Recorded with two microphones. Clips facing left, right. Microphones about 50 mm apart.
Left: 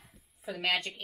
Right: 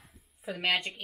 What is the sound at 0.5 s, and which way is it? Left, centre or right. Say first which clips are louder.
Speech: right 1 dB; centre.